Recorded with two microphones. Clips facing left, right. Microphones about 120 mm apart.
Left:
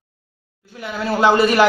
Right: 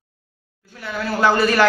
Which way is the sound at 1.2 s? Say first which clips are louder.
Left 2 dB; 20° left (ahead or behind).